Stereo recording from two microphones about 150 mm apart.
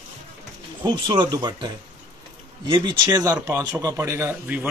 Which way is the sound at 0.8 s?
30° right (ahead or behind).